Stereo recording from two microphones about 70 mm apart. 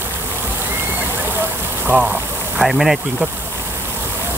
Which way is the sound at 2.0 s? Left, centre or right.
Centre.